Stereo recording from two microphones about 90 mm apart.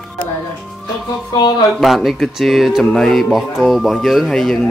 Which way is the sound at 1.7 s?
Centre (ahead or behind).